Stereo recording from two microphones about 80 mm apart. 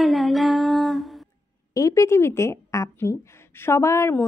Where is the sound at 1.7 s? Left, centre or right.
Left.